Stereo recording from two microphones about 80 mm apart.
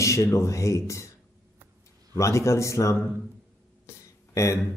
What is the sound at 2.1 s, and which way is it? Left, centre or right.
Speech, left.